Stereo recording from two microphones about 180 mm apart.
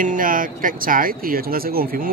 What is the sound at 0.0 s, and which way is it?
Speech, 50° right (ahead or behind).